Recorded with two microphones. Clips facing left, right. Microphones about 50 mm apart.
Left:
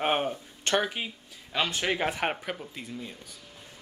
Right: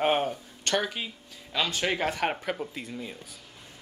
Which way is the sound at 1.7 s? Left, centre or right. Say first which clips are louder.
Even; centre.